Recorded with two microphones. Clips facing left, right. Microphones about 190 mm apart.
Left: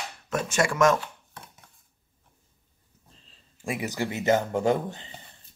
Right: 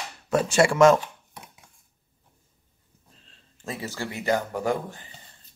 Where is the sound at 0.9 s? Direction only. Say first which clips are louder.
Right 3 dB; 15° right (ahead or behind).